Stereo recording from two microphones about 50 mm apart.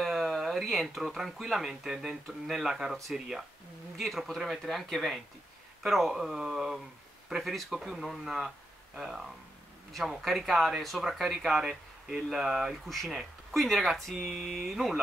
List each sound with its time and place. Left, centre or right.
0.0 s speech: centre
4.0 s speech: centre
12.8 s speech: centre